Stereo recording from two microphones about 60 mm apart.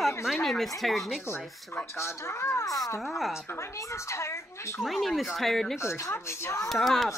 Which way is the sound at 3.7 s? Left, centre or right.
Left.